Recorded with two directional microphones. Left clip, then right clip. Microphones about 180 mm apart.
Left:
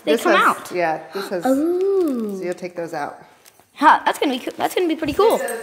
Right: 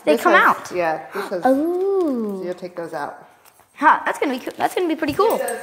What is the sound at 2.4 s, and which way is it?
Speech, 40° left (ahead or behind).